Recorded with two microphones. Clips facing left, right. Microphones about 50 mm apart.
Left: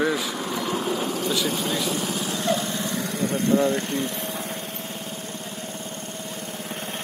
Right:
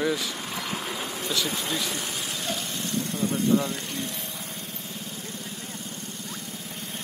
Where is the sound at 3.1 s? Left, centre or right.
Left.